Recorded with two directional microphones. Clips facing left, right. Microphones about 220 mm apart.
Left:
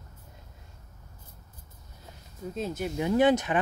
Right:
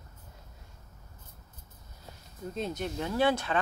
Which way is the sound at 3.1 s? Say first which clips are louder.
Left 5 dB; 20° left (ahead or behind).